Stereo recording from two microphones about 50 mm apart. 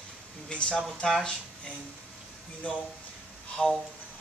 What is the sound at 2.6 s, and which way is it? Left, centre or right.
Speech, left.